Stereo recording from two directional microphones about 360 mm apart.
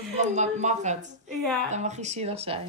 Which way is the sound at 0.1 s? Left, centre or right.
Centre.